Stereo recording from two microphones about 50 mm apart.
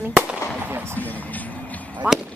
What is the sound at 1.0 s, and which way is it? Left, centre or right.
Speech, left.